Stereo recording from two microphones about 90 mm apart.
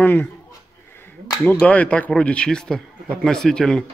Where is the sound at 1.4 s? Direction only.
15° left (ahead or behind).